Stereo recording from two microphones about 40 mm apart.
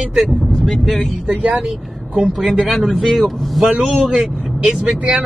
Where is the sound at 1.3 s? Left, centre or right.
Right.